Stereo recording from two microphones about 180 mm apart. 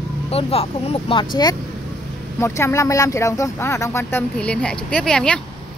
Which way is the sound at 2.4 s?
15° left (ahead or behind).